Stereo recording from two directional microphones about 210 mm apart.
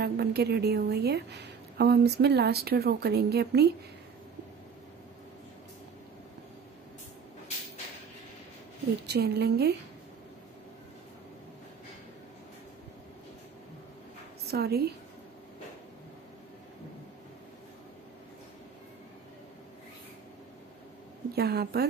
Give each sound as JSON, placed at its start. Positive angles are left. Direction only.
{"t": 0.0, "sound": "a woman's voice", "side_deg": -50}
{"t": 9.0, "sound": "a woman's voice", "side_deg": -50}
{"t": 14.4, "sound": "a woman's voice", "side_deg": -50}
{"t": 21.4, "sound": "a woman's voice", "side_deg": -50}